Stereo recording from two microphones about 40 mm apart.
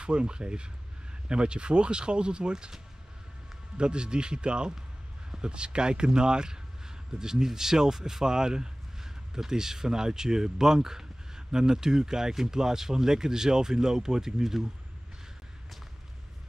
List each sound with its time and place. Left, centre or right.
0.0 s speech: right
3.7 s speech: right